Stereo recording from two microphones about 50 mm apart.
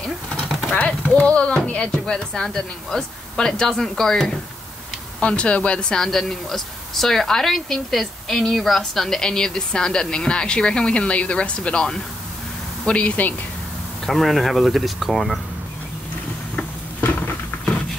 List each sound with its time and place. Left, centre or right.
1.0 s a woman's voice: left
5.2 s speech: left
6.0 s a woman's voice: centre; by 13.3 s left
14.0 s speech: centre